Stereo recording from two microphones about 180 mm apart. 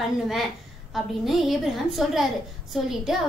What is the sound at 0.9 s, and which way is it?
Speech, centre (ahead or behind).